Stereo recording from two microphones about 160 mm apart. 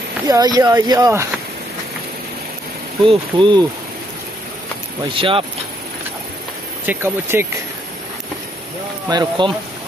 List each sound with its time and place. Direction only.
0.3 s speech: 25° right (ahead or behind)
3.0 s speech: 30° right (ahead or behind)
5.1 s speech: 35° right (ahead or behind)
6.9 s speech: 15° right (ahead or behind)
9.1 s speech: 25° right (ahead or behind)